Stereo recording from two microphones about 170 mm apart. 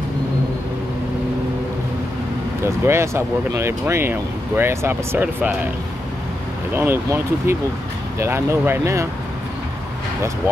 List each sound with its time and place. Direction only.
2.6 s speech: 15° right (ahead or behind)
6.7 s speech: 10° right (ahead or behind)